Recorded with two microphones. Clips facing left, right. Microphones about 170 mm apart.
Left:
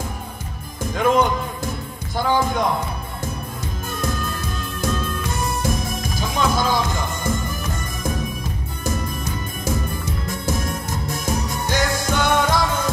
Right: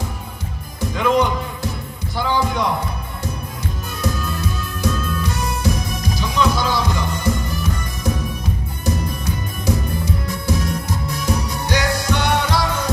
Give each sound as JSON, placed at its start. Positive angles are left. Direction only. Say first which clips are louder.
{"t": 0.7, "sound": "music", "louder": "even", "side_deg": 50}
{"t": 2.1, "sound": "a sound", "louder": "left 1 dB", "side_deg": 50}
{"t": 4.0, "sound": "music", "louder": "right 3 dB", "side_deg": 50}